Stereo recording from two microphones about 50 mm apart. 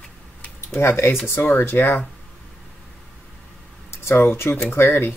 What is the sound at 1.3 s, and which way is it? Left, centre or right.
Speech, left.